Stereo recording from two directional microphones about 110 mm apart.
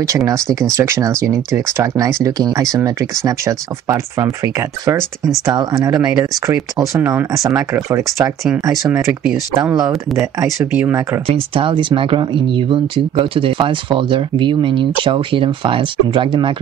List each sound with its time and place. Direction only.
0.0 s speech: 30° right (ahead or behind)
10.7 s speech: 15° right (ahead or behind)
11.2 s speech: 55° right (ahead or behind)